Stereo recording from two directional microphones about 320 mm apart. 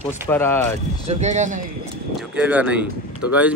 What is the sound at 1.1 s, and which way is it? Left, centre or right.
Speech, right.